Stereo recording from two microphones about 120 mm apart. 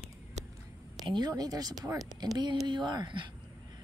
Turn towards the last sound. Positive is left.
turn(degrees=-35)  # may be behind; listen again after turning